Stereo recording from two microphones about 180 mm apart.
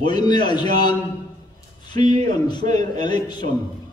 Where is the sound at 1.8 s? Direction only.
25° left (ahead or behind).